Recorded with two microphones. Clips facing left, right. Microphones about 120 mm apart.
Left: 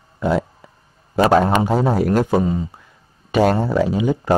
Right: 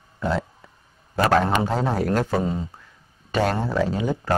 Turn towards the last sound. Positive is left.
turn(degrees=10)  # may be behind; listen again after turning